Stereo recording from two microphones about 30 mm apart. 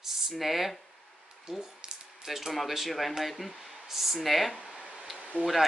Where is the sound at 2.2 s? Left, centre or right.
Centre.